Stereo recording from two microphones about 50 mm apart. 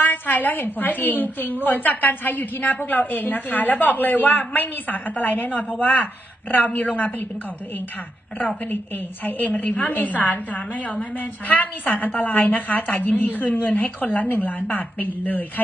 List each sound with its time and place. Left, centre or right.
0.0 s a woman's voice: left
9.2 s a woman's voice: left